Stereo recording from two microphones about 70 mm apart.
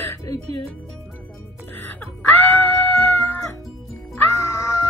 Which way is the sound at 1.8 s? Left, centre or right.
Left.